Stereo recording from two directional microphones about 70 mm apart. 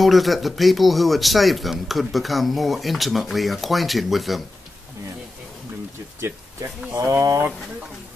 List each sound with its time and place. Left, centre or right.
0.0 s speech: centre
7.1 s speech: right